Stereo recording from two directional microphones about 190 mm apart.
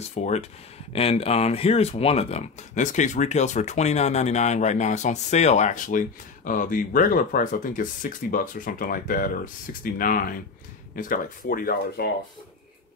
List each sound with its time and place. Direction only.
0.1 s speech: 35° left (ahead or behind)